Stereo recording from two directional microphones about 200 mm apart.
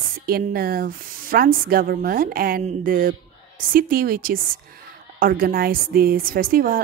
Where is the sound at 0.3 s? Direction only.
50° right (ahead or behind).